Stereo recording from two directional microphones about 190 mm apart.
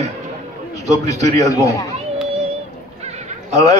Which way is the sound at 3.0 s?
35° right (ahead or behind).